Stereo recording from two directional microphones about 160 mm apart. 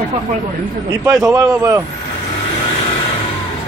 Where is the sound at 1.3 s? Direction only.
15° right (ahead or behind).